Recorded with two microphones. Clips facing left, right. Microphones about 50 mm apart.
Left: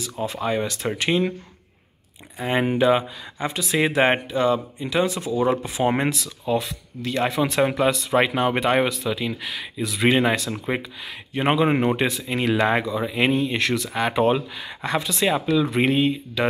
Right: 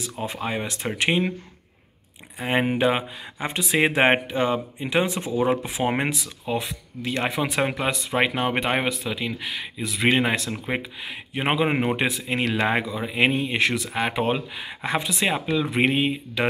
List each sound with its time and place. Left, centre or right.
0.2 s speech: centre
2.3 s speech: centre
5.5 s speech: centre